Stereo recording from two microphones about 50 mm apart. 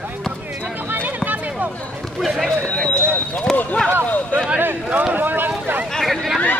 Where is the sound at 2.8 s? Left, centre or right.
Centre.